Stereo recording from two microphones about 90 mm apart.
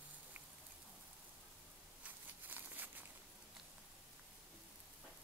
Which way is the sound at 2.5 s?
20° right (ahead or behind).